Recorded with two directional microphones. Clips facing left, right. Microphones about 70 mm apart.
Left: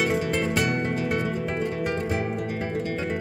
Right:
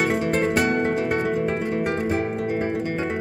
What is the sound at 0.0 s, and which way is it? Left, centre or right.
Music, right.